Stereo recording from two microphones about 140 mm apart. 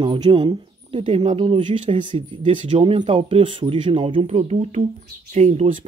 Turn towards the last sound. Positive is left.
turn(degrees=-60)  # may be behind; listen again after turning